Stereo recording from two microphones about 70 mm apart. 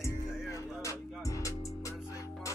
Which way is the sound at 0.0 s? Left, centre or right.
Left.